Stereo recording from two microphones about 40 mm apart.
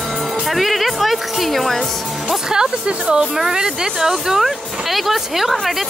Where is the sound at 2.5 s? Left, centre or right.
Centre.